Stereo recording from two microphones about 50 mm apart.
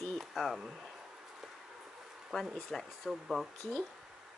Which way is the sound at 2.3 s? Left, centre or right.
Centre.